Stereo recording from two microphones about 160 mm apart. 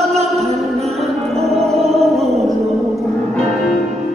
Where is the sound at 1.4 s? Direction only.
40° right (ahead or behind).